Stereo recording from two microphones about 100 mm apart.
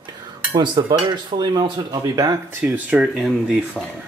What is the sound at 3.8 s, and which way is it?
Speech, 5° left (ahead or behind).